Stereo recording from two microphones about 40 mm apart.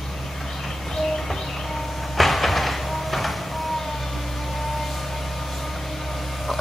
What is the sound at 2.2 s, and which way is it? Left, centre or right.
Music, centre.